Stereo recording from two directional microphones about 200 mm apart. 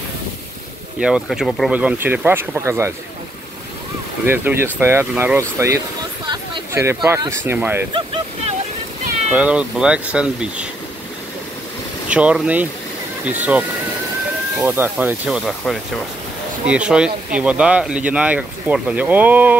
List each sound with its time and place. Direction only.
0.9 s speech: 5° right (ahead or behind)
4.3 s speech: 10° right (ahead or behind)
6.2 s a sound: 20° right (ahead or behind)
7.2 s speech: 15° right (ahead or behind)
9.3 s speech: 5° right (ahead or behind)
12.1 s speech: 5° right (ahead or behind)